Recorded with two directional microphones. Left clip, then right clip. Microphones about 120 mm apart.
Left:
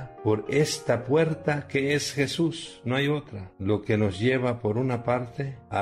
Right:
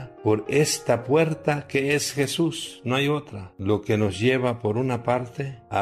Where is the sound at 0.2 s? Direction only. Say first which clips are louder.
Right 3 dB; 30° right (ahead or behind).